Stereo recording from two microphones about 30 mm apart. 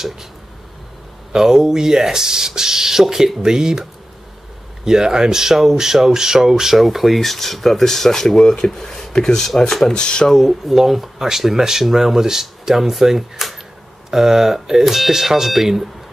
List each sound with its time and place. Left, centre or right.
1.3 s speech: centre
4.8 s speech: right; by 7.2 s centre
7.2 s speech: centre
8.4 s speech: left
9.9 s speech: left
10.2 s speech: centre